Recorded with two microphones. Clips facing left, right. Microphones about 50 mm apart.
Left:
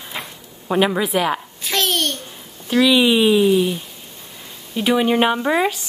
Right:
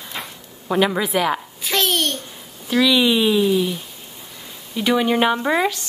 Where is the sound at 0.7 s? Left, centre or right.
Centre.